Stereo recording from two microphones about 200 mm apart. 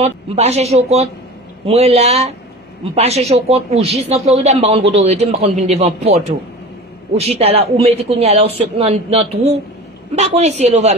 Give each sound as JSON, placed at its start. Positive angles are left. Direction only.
{"t": 0.0, "sound": "speech", "side_deg": -35}